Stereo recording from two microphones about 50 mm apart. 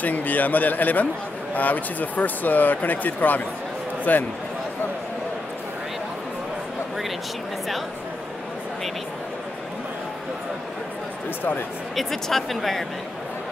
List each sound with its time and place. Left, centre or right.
0.0 s speech: left
11.9 s speech: centre